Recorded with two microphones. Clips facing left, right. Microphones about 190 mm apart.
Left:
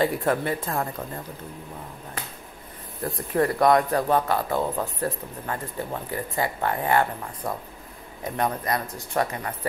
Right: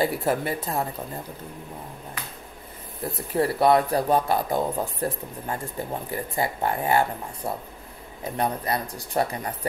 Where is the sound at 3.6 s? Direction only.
30° right (ahead or behind).